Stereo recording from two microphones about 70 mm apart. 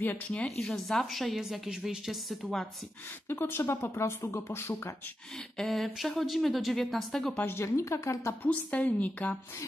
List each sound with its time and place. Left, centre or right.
0.6 s speech: centre
3.3 s speech: left
5.6 s speech: centre
7.3 s speech: left
8.5 s a woman's voice: left